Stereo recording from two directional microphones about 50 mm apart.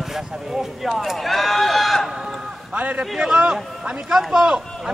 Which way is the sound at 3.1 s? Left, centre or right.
Centre.